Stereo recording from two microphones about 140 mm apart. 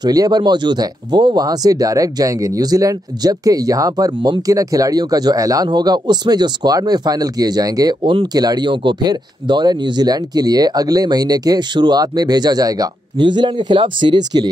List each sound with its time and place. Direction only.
0.0 s speech: 30° right (ahead or behind)
8.0 s speech: 35° right (ahead or behind)